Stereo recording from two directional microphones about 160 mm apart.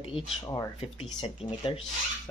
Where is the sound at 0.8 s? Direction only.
40° left (ahead or behind).